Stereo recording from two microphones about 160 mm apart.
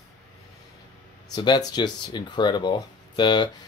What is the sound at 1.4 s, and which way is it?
Speech, 25° left (ahead or behind).